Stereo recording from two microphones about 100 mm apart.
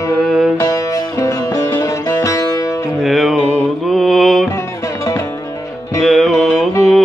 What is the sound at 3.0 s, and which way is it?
Music, centre (ahead or behind).